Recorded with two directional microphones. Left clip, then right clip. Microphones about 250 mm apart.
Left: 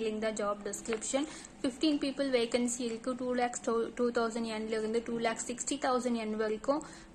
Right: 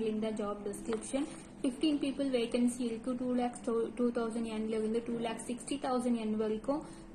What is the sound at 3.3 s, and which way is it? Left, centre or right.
A woman's voice, centre.